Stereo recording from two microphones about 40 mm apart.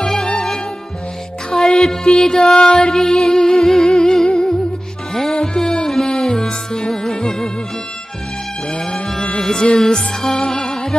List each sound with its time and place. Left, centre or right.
0.0 s music: centre
8.6 s music: centre